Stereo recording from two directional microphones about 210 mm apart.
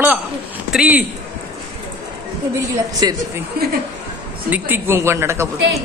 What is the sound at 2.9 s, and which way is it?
Speech, 20° right (ahead or behind).